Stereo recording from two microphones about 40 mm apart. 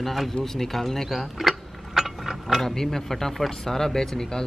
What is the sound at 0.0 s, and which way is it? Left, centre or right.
Speech, centre.